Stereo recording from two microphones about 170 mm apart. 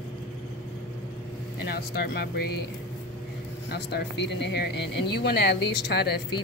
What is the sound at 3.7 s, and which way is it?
Speech, 80° left.